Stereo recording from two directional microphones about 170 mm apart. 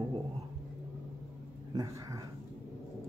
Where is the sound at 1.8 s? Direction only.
20° right (ahead or behind).